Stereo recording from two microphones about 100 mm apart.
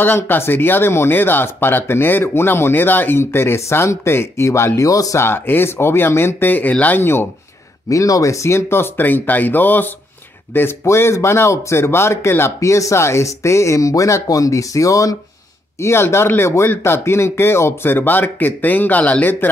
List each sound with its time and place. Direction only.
0.0 s speech: 20° left (ahead or behind)
5.2 s speech: 20° left (ahead or behind)